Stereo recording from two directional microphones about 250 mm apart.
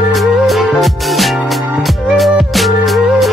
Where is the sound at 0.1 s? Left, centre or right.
Centre.